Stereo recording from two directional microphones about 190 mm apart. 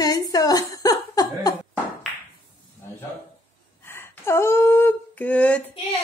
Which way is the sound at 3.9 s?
15° left (ahead or behind).